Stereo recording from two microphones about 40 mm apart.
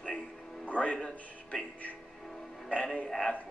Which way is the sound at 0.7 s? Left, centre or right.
Left.